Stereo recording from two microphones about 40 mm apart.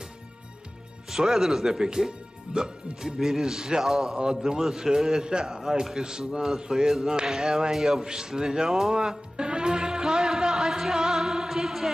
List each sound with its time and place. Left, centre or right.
1.1 s a man's voice: centre
5.6 s a man's voice: centre
8.6 s music: centre